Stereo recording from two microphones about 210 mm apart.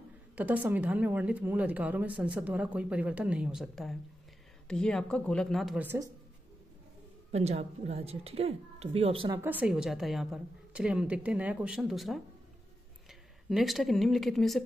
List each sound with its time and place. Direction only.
0.4 s a woman's voice: 10° right (ahead or behind)
7.3 s speech: 30° right (ahead or behind)
9.4 s a woman's voice: 10° right (ahead or behind)
13.5 s a woman's voice: centre (ahead or behind)